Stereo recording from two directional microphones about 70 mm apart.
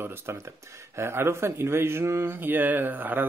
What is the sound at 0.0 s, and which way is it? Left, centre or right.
Speech, right.